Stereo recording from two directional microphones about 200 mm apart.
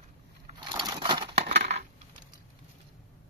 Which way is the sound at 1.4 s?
35° right (ahead or behind).